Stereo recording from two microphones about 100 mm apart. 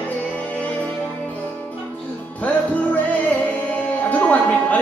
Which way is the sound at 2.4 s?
15° left (ahead or behind).